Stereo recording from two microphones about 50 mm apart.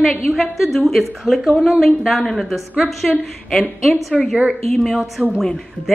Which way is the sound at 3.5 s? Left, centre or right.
Centre.